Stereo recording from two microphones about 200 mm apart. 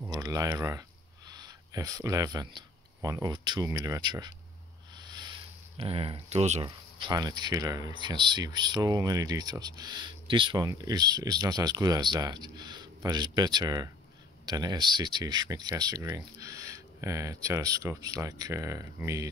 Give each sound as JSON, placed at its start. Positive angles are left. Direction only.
{"t": 0.1, "sound": "speech", "side_deg": -20}
{"t": 4.9, "sound": "a sound", "side_deg": -20}
{"t": 5.8, "sound": "speech", "side_deg": -25}